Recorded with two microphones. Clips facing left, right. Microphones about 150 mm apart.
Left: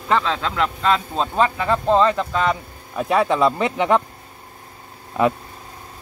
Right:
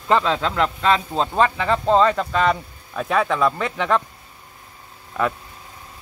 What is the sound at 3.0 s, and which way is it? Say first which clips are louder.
Speech: left 2 dB; 20° left (ahead or behind).